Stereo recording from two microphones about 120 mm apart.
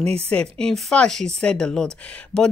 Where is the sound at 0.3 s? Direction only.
5° left (ahead or behind).